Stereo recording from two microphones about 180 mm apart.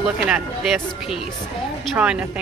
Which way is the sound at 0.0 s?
Centre (ahead or behind).